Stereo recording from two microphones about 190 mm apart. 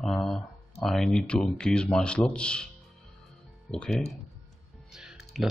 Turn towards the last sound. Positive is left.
turn(degrees=-5)  # may be behind; listen again after turning